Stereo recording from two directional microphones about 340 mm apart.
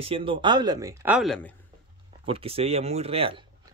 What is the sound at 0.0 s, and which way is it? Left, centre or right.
Speech, centre.